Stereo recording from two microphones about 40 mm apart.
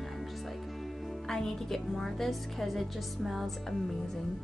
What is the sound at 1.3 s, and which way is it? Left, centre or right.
A woman's voice, centre.